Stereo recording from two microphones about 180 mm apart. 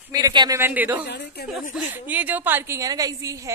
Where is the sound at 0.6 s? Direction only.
10° right (ahead or behind).